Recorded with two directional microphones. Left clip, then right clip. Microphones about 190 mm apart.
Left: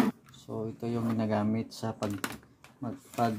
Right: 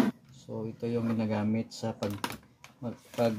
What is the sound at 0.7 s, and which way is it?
Speech, 25° left (ahead or behind).